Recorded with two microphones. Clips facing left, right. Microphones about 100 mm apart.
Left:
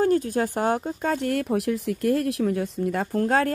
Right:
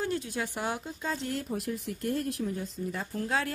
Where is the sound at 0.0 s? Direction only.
45° left (ahead or behind).